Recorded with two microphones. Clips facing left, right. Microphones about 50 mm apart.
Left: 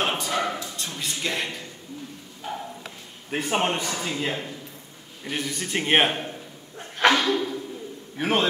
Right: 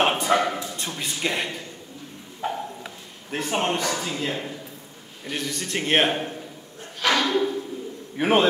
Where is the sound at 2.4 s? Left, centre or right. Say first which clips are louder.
Right 5 dB; right.